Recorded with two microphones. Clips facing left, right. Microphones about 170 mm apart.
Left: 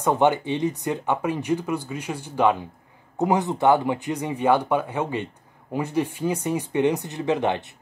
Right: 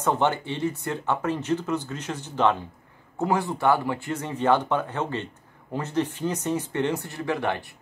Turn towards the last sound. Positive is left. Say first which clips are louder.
# left 4 dB
turn(degrees=20)  # may be behind; listen again after turning